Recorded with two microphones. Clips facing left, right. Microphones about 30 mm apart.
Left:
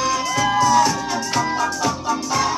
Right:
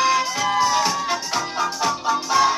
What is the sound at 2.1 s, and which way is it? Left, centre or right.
Music, right.